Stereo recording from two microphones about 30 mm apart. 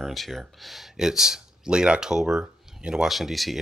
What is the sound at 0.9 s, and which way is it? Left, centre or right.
Speech, centre.